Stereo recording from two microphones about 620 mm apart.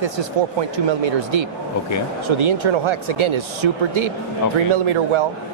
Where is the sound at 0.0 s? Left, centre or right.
Right.